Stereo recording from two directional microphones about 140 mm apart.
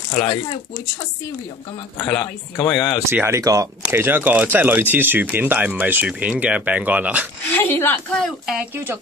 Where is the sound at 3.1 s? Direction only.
20° right (ahead or behind).